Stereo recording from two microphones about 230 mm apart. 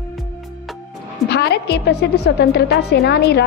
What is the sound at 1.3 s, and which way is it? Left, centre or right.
A woman's voice, left.